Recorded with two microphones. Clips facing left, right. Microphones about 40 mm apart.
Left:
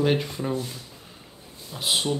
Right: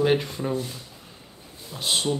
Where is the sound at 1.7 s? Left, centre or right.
Centre.